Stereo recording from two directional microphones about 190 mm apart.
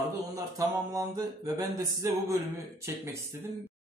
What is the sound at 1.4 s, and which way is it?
Speech, 15° right (ahead or behind).